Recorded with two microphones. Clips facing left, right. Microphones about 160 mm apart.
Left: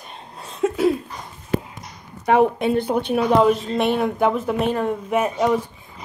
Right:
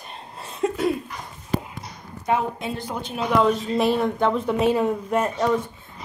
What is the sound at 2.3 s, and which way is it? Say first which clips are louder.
Speech: left 7 dB; 65° left (ahead or behind).